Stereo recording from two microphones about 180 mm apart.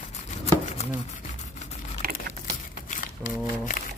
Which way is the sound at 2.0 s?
55° right (ahead or behind).